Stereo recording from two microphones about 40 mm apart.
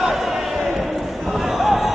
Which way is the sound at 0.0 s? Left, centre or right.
Centre.